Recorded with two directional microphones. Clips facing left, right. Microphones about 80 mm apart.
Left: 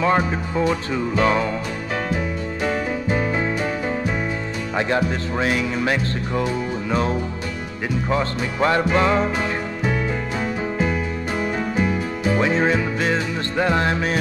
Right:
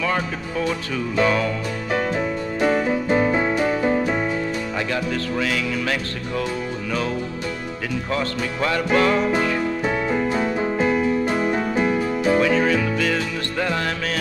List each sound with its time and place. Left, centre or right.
0.0 s music: left
4.7 s music: left
12.4 s music: left